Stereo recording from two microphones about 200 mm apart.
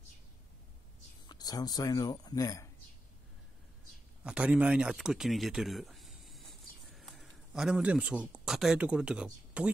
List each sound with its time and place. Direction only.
1.2 s speech: 20° left (ahead or behind)
4.2 s speech: 5° right (ahead or behind)